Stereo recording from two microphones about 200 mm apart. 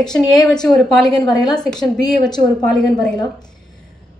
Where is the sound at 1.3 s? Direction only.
20° left (ahead or behind).